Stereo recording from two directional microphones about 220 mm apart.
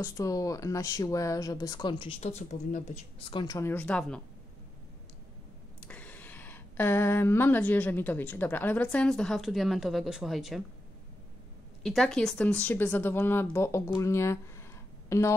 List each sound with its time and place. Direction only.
0.0 s speech: 15° left (ahead or behind)
5.8 s speech: 5° left (ahead or behind)
11.8 s speech: centre (ahead or behind)